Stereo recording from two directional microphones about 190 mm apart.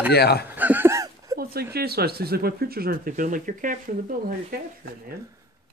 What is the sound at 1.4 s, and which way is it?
Speech, 55° right (ahead or behind).